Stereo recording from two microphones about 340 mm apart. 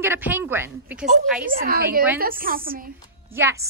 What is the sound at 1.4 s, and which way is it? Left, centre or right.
A woman's voice, right.